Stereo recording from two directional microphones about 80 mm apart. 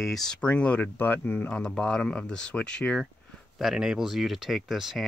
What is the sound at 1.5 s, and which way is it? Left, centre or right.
Speech, centre.